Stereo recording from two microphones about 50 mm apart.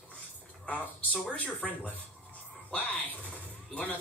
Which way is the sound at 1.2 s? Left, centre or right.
Left.